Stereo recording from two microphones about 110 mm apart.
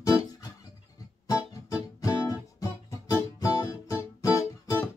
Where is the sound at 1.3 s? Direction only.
30° left (ahead or behind).